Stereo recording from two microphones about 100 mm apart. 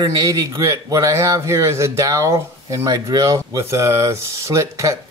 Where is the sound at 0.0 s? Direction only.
40° right (ahead or behind).